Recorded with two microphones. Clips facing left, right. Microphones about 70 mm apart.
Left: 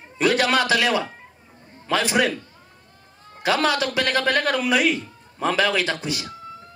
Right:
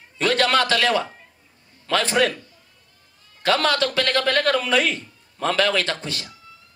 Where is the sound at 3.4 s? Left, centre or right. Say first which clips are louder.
Right 1 dB; centre.